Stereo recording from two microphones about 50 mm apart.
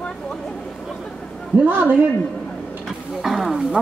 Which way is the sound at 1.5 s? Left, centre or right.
Right.